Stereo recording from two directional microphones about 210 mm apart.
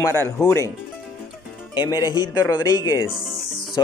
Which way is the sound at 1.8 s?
20° left (ahead or behind).